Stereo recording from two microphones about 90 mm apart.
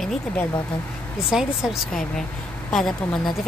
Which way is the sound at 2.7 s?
5° left (ahead or behind).